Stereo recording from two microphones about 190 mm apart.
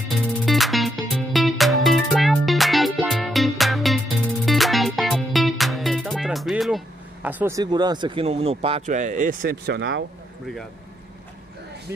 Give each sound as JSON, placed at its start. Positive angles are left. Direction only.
{"t": 0.1, "sound": "music", "side_deg": 0}
{"t": 7.2, "sound": "speech", "side_deg": -10}